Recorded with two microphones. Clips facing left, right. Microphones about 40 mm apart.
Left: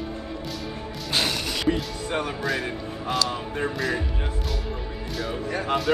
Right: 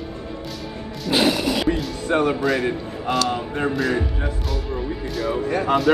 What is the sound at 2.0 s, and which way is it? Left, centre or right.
Speech, right.